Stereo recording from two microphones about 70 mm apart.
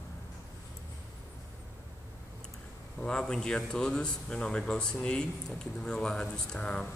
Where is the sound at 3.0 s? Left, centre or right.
Centre.